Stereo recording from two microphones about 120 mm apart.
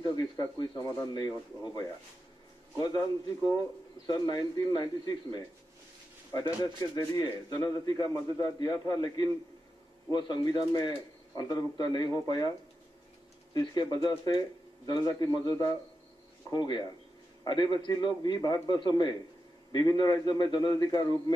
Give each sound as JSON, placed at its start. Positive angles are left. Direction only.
{"t": 0.0, "sound": "speech", "side_deg": 35}
{"t": 10.1, "sound": "speech", "side_deg": 40}
{"t": 13.5, "sound": "speech", "side_deg": 35}